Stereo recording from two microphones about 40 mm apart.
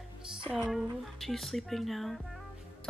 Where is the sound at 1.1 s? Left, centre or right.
Centre.